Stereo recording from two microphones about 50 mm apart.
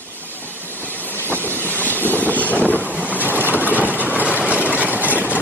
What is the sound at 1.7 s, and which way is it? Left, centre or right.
Vehicle, left.